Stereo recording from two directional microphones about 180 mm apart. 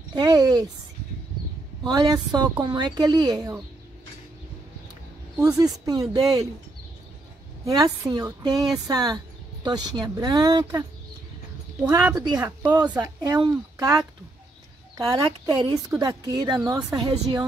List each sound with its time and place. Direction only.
0.1 s speech: 20° right (ahead or behind)
1.9 s speech: 20° right (ahead or behind)
5.4 s speech: 20° right (ahead or behind)
7.6 s speech: 20° right (ahead or behind)
13.0 s speech: 20° right (ahead or behind)